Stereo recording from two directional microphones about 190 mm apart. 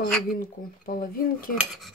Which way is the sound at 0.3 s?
50° left (ahead or behind).